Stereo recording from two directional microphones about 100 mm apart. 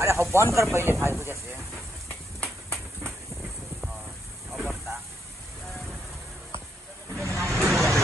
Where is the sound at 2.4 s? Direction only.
10° left (ahead or behind).